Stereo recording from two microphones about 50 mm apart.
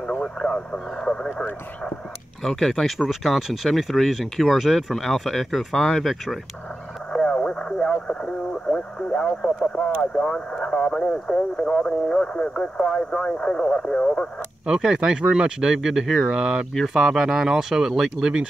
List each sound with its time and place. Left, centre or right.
1.0 s speech: centre
2.4 s speech: centre
3.1 s speech: centre
7.1 s radio: centre
8.6 s speech: centre
14.7 s speech: centre